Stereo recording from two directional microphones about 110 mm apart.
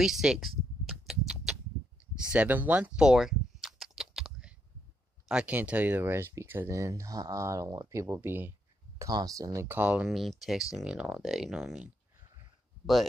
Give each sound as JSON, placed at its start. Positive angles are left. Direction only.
{"t": 0.0, "sound": "a sound", "side_deg": -5}
{"t": 5.3, "sound": "speech", "side_deg": -10}
{"t": 9.7, "sound": "speech", "side_deg": -15}
{"t": 10.1, "sound": "speech", "side_deg": 0}